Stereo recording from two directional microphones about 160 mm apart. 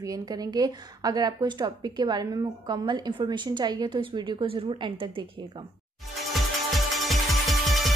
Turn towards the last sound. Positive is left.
turn(degrees=0)  # may be behind; listen again after turning